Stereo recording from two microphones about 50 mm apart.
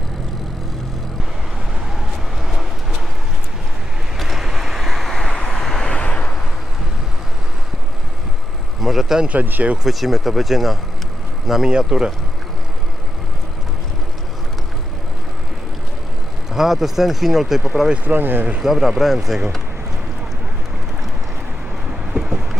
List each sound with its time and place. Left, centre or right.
2.0 s a sound: centre
4.2 s vehicle: centre
5.9 s vehicle: left
8.8 s vehicle: centre
9.2 s speech: right
9.8 s speech: centre
16.5 s speech: centre
18.0 s speech: right
18.6 s speech: centre
22.1 s vehicle: centre